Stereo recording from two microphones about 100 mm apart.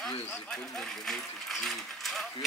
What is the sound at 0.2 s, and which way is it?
Speech, 20° left (ahead or behind).